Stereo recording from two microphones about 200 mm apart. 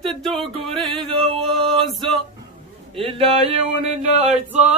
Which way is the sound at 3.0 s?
30° right (ahead or behind).